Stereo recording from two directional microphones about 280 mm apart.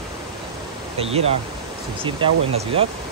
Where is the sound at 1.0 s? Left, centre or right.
Right.